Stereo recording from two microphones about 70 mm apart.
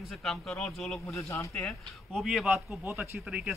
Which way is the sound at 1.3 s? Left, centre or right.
Left.